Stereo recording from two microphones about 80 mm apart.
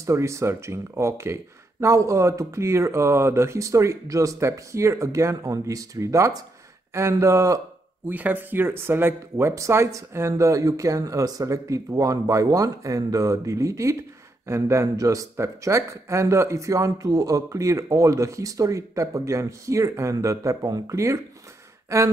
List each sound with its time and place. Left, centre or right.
0.0 s speech: right
8.1 s speech: right
21.8 s a sound: right